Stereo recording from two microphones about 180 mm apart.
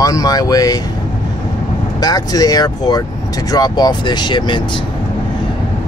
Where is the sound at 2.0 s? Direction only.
20° left (ahead or behind).